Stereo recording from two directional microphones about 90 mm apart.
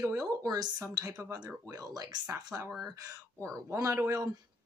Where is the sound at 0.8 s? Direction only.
35° right (ahead or behind).